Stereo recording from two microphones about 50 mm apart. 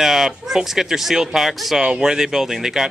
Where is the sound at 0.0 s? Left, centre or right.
Centre.